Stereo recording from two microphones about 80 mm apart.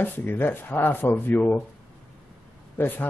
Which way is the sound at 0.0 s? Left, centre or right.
Left.